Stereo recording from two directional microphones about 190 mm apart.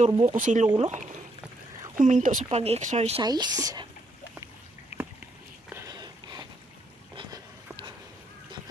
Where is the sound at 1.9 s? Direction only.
45° right (ahead or behind).